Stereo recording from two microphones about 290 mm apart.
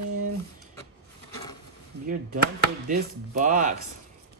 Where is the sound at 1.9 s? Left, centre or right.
Right.